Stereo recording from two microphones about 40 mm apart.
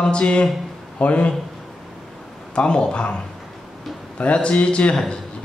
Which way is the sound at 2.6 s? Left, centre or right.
Left.